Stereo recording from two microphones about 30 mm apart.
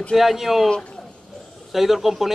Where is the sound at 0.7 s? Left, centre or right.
Left.